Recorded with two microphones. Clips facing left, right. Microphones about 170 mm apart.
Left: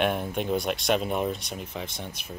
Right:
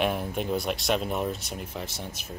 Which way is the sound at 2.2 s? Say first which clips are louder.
Even; 55° left (ahead or behind).